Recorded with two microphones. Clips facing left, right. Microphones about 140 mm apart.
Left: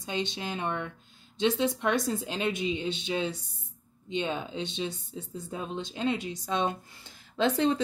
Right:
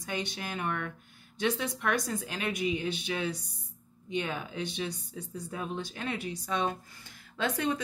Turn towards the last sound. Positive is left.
turn(degrees=25)  # may be behind; listen again after turning